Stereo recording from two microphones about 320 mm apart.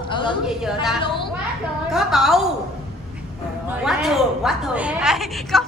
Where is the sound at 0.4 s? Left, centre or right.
Centre.